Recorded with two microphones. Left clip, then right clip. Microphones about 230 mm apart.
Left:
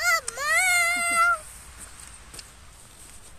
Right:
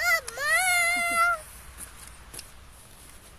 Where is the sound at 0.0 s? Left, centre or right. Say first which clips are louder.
Left 1 dB; left.